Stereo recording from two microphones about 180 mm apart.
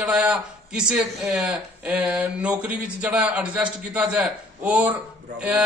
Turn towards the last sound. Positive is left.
turn(degrees=-5)  # may be behind; listen again after turning